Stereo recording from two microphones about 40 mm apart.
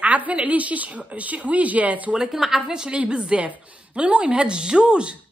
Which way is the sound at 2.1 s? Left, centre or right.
Centre.